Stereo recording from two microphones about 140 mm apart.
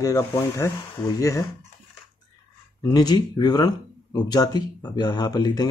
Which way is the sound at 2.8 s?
30° left (ahead or behind).